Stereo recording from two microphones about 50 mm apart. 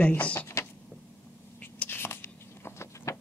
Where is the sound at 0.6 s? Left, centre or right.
Left.